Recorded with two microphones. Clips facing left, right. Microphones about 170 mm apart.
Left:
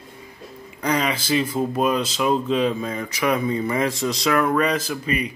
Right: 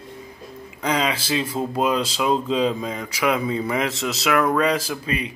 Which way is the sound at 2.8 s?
15° right (ahead or behind).